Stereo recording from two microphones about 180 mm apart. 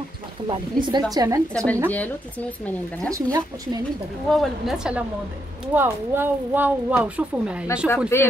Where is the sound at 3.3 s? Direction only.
20° right (ahead or behind).